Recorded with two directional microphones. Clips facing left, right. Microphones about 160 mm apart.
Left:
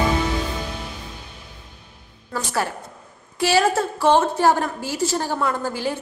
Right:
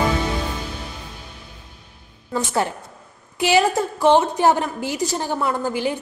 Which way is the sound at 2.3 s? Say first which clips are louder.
Right 3 dB; 20° right (ahead or behind).